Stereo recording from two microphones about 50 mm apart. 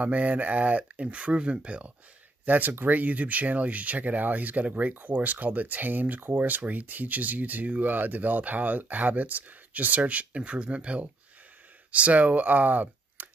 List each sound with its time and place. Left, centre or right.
0.0 s speech: right
2.4 s speech: right